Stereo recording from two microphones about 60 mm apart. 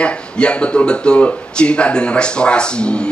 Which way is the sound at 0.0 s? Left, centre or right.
Centre.